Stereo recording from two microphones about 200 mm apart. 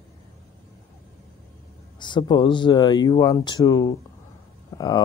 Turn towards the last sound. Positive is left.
turn(degrees=20)  # may be behind; listen again after turning